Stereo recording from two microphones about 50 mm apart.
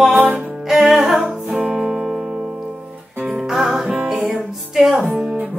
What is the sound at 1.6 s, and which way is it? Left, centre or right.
Music, right.